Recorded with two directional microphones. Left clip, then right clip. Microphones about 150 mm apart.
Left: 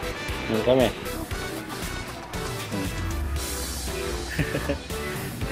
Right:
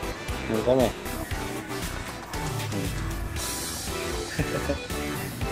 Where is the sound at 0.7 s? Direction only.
15° right (ahead or behind).